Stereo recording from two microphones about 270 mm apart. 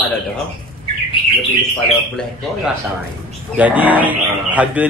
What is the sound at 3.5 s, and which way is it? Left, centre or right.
Speech, centre.